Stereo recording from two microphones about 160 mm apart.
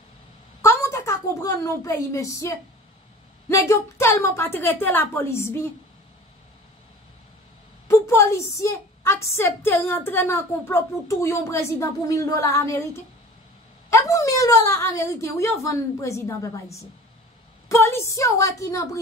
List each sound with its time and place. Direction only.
0.6 s a sound: 15° left (ahead or behind)
3.4 s a woman's voice: 15° left (ahead or behind)
7.9 s a woman's voice: 15° left (ahead or behind)
13.8 s a woman's voice: 20° left (ahead or behind)